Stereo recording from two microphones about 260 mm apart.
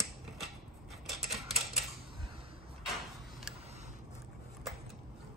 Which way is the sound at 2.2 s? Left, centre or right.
Centre.